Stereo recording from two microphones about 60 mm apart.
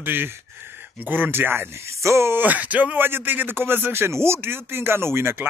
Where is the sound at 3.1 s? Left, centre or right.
Right.